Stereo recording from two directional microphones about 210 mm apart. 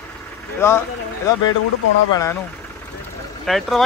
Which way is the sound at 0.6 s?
10° left (ahead or behind).